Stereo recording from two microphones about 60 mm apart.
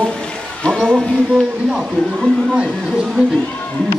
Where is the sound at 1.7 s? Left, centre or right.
Centre.